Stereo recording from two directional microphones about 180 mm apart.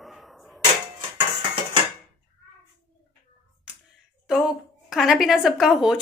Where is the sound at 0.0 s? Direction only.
Centre (ahead or behind).